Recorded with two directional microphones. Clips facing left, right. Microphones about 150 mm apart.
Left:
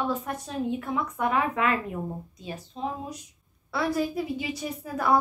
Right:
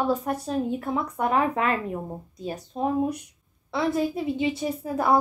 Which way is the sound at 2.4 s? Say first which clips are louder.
Right 6 dB; 50° right (ahead or behind).